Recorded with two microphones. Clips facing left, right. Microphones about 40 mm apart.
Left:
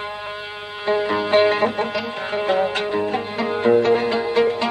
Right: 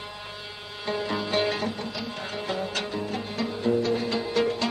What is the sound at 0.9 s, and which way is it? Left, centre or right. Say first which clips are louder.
Music: left 9 dB; left.